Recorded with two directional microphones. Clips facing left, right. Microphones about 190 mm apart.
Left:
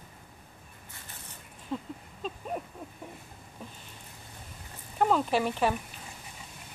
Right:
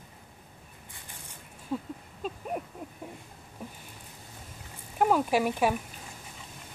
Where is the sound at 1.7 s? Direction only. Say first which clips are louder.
Right 2 dB; 5° right (ahead or behind).